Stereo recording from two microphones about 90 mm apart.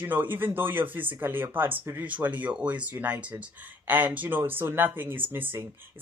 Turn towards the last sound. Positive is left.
turn(degrees=-25)  # may be behind; listen again after turning